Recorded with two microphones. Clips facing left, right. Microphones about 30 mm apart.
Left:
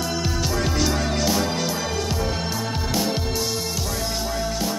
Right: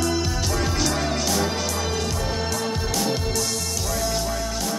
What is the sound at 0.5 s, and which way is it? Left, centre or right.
Music, centre.